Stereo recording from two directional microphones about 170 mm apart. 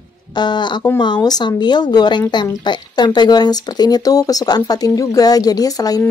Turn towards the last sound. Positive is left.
turn(degrees=20)  # may be behind; listen again after turning